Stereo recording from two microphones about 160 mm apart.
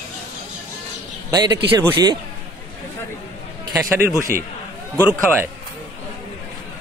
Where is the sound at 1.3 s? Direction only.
25° right (ahead or behind).